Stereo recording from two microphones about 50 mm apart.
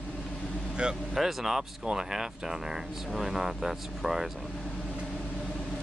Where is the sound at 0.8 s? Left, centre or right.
Centre.